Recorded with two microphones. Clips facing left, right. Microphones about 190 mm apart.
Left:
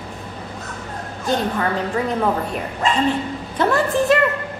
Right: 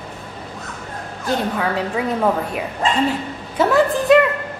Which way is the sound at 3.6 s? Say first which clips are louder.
Right 2 dB; centre (ahead or behind).